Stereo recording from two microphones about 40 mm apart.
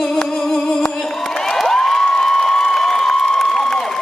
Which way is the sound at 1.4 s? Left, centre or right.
Centre.